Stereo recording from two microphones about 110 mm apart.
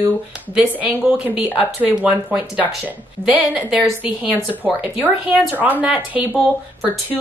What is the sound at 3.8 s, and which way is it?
Speech, 15° right (ahead or behind).